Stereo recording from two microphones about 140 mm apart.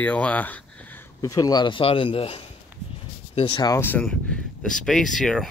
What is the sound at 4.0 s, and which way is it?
Speech, 5° left (ahead or behind).